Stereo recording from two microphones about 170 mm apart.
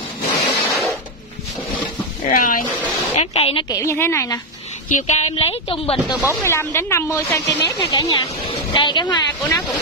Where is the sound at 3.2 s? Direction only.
35° left (ahead or behind).